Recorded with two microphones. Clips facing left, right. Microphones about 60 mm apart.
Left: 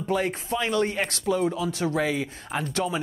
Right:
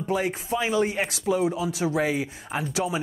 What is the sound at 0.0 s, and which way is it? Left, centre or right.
Speech, centre.